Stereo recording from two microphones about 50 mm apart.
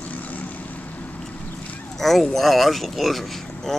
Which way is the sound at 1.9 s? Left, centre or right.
Centre.